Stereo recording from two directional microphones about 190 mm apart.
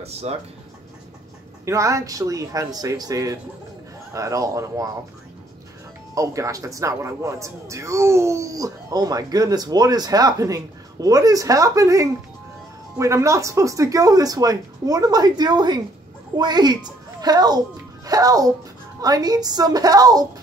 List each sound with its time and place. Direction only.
0.0 s speech: 35° right (ahead or behind)
1.7 s a man's voice: 15° right (ahead or behind)
6.1 s a man's voice: 15° right (ahead or behind)